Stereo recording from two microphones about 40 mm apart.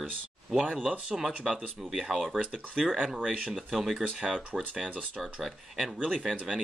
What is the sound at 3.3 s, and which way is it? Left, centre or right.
Speech, right.